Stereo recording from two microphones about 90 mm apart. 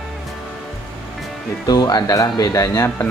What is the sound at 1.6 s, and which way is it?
Speech, 45° left (ahead or behind).